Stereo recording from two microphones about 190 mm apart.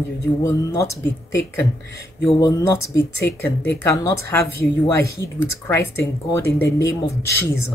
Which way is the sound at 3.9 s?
15° left (ahead or behind).